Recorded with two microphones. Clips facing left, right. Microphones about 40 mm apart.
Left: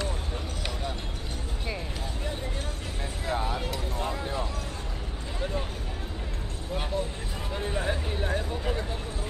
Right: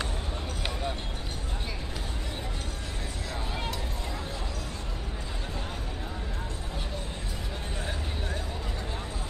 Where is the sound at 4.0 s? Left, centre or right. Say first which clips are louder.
Left 6 dB; left.